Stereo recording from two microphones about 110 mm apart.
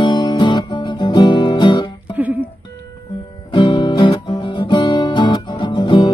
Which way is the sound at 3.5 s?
45° left (ahead or behind).